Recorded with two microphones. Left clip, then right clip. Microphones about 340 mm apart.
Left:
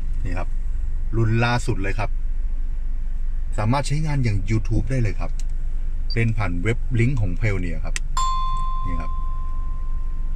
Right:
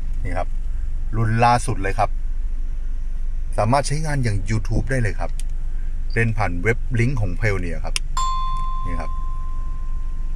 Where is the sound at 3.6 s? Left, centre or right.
Centre.